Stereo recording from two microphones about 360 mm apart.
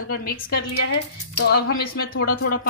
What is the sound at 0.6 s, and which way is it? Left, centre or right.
Speech, left.